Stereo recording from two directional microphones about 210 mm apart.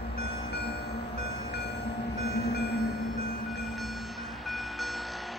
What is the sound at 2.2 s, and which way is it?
Train, 55° left (ahead or behind).